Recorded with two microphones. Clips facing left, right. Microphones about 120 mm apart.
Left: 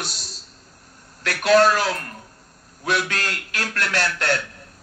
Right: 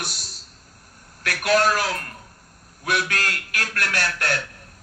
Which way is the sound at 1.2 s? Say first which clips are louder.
Left 4 dB; 25° left (ahead or behind).